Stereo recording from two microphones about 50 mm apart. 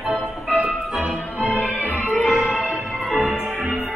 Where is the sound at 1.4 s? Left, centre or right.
Right.